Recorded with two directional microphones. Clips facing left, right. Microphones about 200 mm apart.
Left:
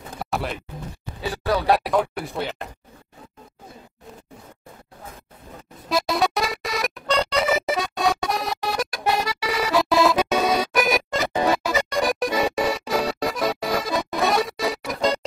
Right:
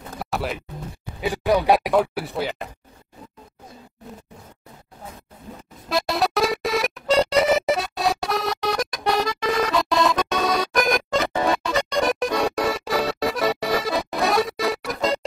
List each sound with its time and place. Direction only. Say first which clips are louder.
0.2 s a sound: even; centre (ahead or behind)
1.2 s speech: right 3 dB; 15° right (ahead or behind)
5.9 s music: left 1 dB; centre (ahead or behind)